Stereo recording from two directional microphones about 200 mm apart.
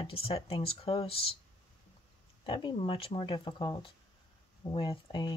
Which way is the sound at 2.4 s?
25° left (ahead or behind).